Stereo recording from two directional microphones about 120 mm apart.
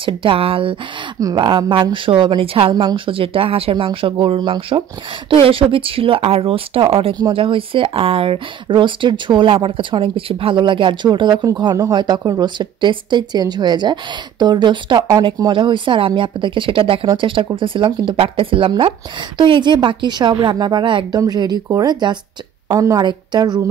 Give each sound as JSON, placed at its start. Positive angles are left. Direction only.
{"t": 0.0, "sound": "speech", "side_deg": -45}
{"t": 1.2, "sound": "speech", "side_deg": -35}
{"t": 2.7, "sound": "speech", "side_deg": -35}
{"t": 3.2, "sound": "speech", "side_deg": -50}